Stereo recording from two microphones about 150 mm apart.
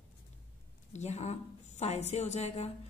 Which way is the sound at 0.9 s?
50° left (ahead or behind).